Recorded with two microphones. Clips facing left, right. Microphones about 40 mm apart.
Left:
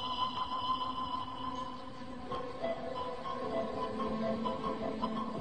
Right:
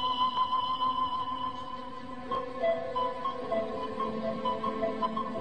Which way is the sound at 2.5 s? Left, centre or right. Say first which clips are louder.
Right 10 dB; right.